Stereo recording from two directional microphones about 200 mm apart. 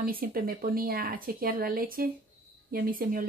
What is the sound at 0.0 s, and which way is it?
Speech, 45° right (ahead or behind).